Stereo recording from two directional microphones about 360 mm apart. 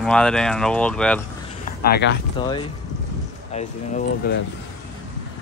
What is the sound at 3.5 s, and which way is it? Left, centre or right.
Speech, left.